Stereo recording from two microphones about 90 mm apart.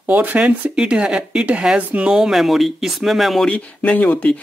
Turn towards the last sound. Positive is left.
turn(degrees=20)  # may be behind; listen again after turning